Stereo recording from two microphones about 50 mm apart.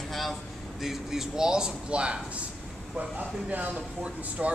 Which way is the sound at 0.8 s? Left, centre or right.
Centre.